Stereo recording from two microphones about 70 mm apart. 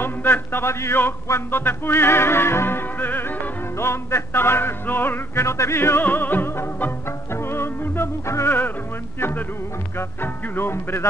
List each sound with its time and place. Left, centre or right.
0.0 s a man's voice: left
1.2 s music: left
9.9 s music: left